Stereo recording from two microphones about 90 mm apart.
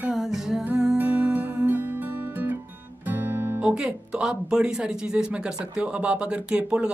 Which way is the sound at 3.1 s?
25° right (ahead or behind).